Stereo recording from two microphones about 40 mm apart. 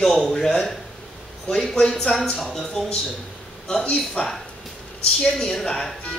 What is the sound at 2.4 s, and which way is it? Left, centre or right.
Speech, centre.